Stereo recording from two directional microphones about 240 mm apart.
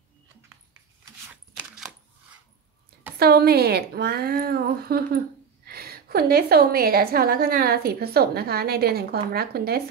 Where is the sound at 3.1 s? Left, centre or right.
Right.